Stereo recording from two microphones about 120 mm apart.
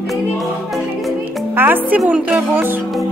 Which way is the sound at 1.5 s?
15° right (ahead or behind).